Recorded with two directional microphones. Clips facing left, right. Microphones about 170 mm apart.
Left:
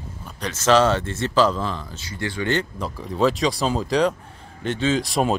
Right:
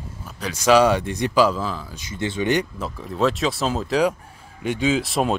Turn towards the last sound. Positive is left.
turn(degrees=0)  # may be behind; listen again after turning